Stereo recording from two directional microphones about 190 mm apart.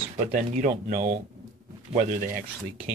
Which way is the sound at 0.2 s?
40° right (ahead or behind).